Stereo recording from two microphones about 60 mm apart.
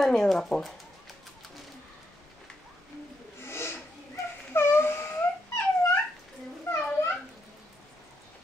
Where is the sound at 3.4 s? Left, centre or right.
Left.